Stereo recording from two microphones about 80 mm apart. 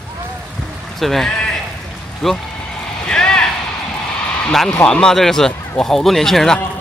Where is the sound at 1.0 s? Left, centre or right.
Centre.